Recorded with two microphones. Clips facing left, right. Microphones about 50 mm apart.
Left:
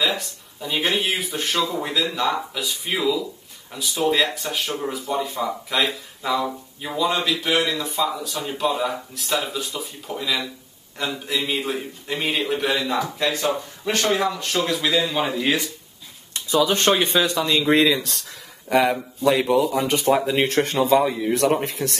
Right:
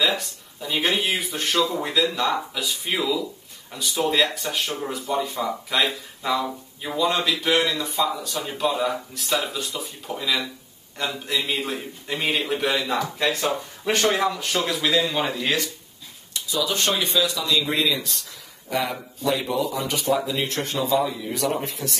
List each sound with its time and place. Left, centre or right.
0.0 s speech: centre
16.3 s speech: left